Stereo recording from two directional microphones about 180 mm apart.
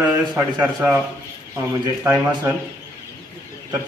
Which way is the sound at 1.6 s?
15° right (ahead or behind).